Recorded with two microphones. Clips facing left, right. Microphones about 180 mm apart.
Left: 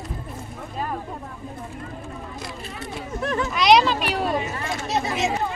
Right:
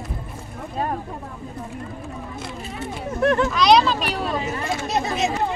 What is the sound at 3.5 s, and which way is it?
Speech, 15° left (ahead or behind).